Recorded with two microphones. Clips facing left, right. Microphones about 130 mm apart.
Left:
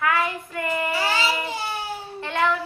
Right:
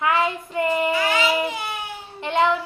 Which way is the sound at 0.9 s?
30° left (ahead or behind).